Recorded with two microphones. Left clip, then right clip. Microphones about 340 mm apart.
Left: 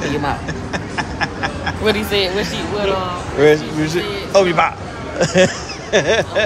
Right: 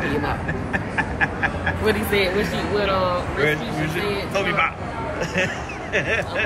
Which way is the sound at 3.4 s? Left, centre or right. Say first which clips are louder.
Left 12 dB; centre.